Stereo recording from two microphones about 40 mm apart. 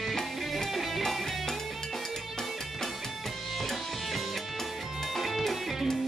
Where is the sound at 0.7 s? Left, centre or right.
Centre.